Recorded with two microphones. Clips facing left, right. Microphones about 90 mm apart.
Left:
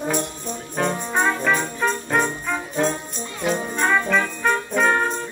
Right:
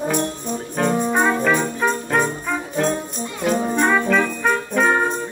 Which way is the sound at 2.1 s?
5° right (ahead or behind).